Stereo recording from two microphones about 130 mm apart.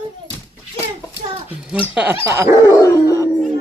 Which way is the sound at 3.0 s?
20° right (ahead or behind).